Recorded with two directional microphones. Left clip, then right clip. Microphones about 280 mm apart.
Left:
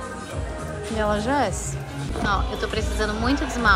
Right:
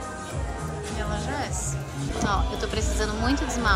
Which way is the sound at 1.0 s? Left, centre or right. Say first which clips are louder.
Left 10 dB; centre.